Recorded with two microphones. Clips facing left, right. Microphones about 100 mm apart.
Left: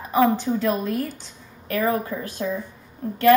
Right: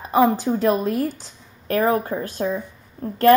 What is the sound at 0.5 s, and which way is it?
Speech, 40° right (ahead or behind).